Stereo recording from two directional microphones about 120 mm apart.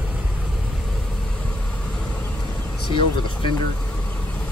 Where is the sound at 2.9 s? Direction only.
45° left (ahead or behind).